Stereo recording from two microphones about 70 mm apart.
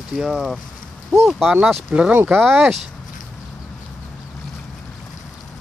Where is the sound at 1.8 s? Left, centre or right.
Centre.